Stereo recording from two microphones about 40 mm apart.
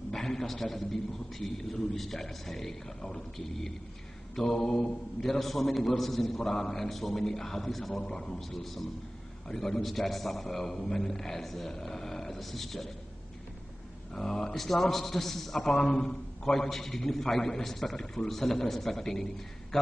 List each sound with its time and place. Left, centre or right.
0.1 s a man's voice: centre
4.4 s a man's voice: centre
7.9 s a man's voice: centre
8.5 s a man's voice: centre
14.1 s a man's voice: centre